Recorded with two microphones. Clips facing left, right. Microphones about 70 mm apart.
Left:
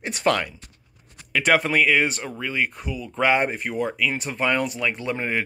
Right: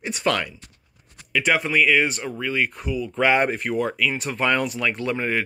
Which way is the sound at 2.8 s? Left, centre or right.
Left.